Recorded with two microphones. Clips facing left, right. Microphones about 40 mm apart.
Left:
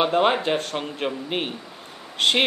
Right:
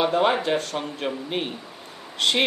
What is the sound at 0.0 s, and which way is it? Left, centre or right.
Speech, left.